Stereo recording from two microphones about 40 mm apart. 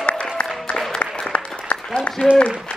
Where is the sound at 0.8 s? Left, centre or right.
Centre.